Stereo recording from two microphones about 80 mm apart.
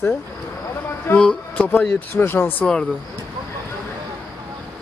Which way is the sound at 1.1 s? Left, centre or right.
Centre.